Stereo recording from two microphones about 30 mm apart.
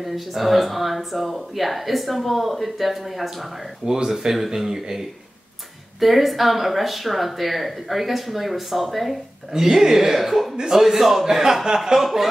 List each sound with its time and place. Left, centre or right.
0.0 s speech: centre
3.8 s speech: centre
5.9 s speech: centre
9.5 s speech: centre
10.5 s speech: right
10.8 s speech: centre
12.0 s speech: centre